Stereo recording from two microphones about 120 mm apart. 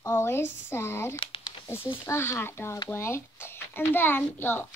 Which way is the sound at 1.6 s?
20° left (ahead or behind).